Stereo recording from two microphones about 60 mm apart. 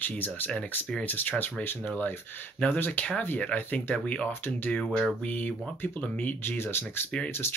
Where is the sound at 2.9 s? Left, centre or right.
Left.